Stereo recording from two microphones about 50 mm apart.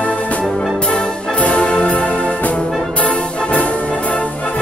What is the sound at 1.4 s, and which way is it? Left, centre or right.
Brass instrument, left.